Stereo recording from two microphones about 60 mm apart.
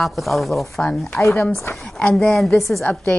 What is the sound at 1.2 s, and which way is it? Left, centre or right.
Speech, left.